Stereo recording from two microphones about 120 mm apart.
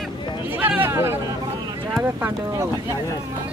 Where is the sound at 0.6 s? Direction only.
15° right (ahead or behind).